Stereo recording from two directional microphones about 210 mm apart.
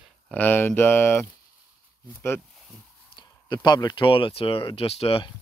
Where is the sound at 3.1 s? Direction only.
20° left (ahead or behind).